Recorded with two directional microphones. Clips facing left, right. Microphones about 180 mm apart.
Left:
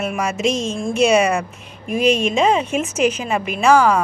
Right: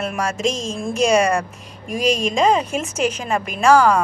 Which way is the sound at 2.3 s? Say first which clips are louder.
Left 1 dB; 5° left (ahead or behind).